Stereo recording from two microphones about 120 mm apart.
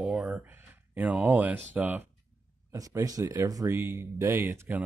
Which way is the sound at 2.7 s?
30° right (ahead or behind).